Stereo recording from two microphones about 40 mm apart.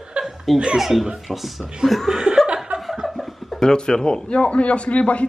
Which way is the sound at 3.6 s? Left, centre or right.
Centre.